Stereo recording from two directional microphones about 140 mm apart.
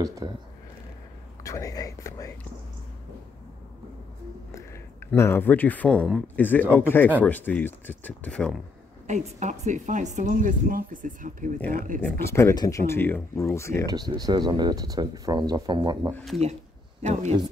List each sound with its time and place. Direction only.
0.0 s speech: 25° right (ahead or behind)
1.4 s whispering: 25° left (ahead or behind)
4.5 s a sound: 20° left (ahead or behind)
6.2 s speech: 15° left (ahead or behind)
9.0 s speech: 55° right (ahead or behind); by 12.0 s 70° right (ahead or behind)
12.0 s speech: 20° left (ahead or behind)
13.8 s speech: 30° right (ahead or behind)
17.0 s speech: 55° right (ahead or behind)